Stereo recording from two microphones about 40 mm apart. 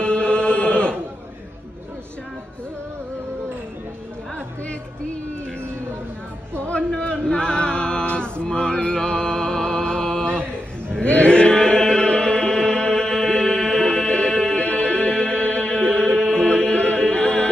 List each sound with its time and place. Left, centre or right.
0.0 s chant: left
6.7 s male singing: left
11.1 s chant: left
14.7 s music: left; by 16.4 s centre
16.4 s music: left